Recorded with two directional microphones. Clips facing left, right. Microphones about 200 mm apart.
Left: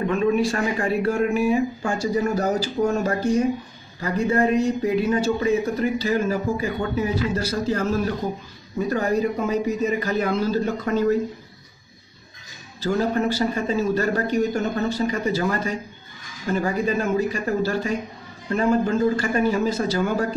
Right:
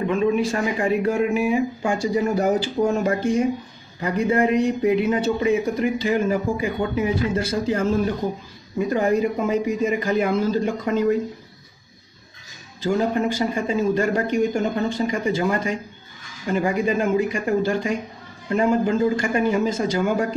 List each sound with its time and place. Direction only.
0.0 s speech: 15° right (ahead or behind)
13.0 s speech: 15° right (ahead or behind)